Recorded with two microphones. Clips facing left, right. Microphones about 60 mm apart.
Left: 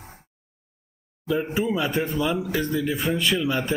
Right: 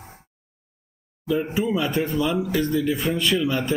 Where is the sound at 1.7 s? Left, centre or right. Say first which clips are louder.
Right 1 dB; centre.